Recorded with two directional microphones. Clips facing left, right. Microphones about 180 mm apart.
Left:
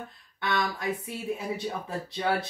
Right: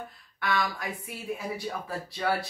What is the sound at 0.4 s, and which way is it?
A woman's voice, 20° left (ahead or behind).